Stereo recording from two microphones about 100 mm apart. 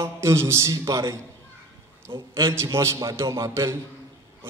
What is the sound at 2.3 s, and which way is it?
A man's voice, 30° right (ahead or behind).